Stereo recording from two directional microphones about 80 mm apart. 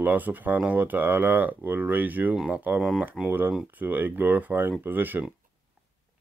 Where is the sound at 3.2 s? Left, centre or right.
Centre.